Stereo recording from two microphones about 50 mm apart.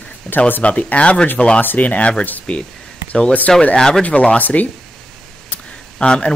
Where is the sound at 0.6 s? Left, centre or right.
Left.